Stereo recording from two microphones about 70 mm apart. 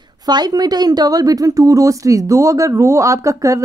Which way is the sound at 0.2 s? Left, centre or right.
Right.